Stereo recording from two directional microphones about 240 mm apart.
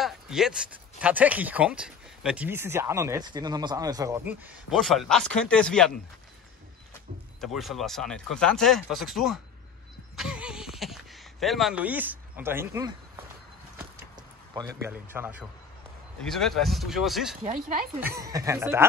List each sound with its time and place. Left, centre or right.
0.0 s speech: centre
4.6 s speech: centre
7.3 s speech: centre
10.1 s a sound: centre
14.5 s speech: centre
17.4 s speech: right
18.0 s speech: centre